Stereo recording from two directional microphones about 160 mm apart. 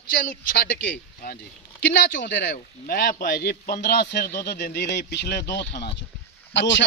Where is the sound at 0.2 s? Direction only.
65° left (ahead or behind).